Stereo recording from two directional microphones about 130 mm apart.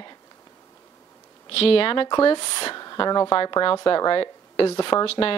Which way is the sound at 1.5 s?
45° left (ahead or behind).